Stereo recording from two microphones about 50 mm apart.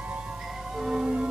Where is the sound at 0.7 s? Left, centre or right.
Centre.